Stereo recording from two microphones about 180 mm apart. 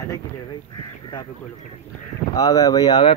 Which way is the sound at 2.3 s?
20° left (ahead or behind).